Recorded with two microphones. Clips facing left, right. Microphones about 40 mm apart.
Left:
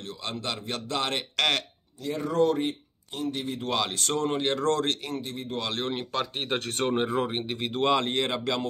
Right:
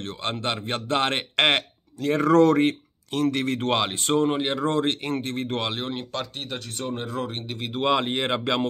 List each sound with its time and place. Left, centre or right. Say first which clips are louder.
0.0 s speech: right 5 dB; right
2.0 s speech: right 7 dB; right
3.7 s speech: right 3 dB; right
5.0 s speech: right 6 dB; right
5.8 s speech: left 1 dB; centre
6.3 s speech: left 4 dB; left
6.6 s speech: left 4 dB; left
6.9 s speech: left 3 dB; left
7.5 s speech: right 2 dB; centre